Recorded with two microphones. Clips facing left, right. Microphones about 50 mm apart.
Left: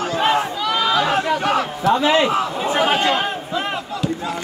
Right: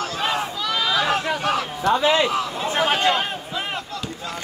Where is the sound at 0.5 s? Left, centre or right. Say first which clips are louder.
Left 4 dB; centre.